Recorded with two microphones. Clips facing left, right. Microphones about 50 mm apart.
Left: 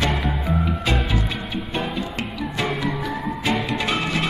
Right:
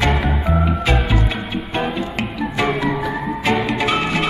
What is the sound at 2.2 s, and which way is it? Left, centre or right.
Music, centre.